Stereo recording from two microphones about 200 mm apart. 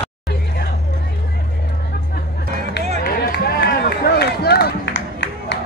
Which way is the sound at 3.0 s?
50° left (ahead or behind).